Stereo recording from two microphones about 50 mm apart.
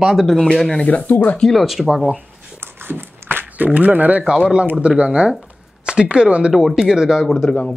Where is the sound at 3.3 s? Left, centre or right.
Right.